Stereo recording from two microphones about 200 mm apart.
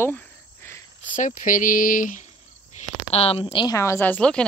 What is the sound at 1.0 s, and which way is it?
Speech, 40° left (ahead or behind).